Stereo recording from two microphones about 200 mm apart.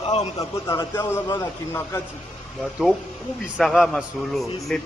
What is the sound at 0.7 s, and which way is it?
Speech, 15° left (ahead or behind).